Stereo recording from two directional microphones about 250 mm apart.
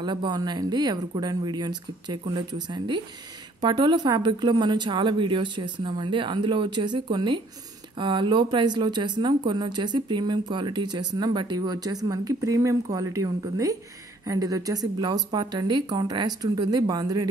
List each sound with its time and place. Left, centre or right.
0.0 s a woman's voice: centre